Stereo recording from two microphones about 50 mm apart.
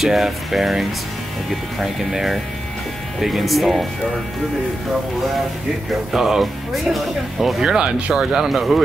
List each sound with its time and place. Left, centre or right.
0.0 s speech: centre
6.1 s speech: centre
7.6 s speech: centre